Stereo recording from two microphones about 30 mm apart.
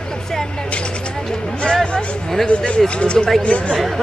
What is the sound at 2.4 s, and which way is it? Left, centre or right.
Speech, left.